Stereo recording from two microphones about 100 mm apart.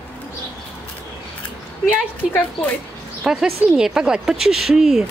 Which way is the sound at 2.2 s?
10° right (ahead or behind).